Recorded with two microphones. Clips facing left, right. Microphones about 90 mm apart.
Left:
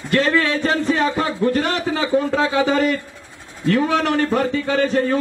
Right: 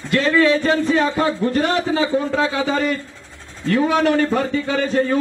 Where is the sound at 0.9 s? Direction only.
25° right (ahead or behind).